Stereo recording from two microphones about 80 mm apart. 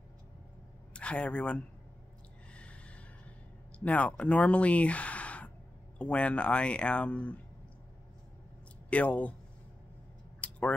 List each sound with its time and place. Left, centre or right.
0.9 s speech: centre
2.5 s gasp: centre
3.8 s speech: centre
8.9 s speech: centre
10.4 s tick-tock: centre